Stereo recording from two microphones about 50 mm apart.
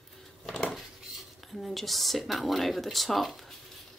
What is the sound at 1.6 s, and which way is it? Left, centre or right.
Speech, centre.